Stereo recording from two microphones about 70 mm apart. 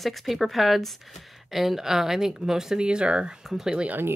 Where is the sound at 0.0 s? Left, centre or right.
Centre.